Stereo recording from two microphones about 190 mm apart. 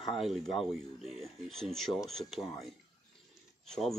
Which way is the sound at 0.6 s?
Centre (ahead or behind).